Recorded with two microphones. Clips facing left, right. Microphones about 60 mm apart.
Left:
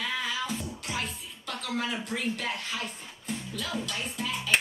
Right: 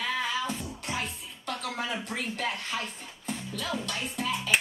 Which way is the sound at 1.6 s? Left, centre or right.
Right.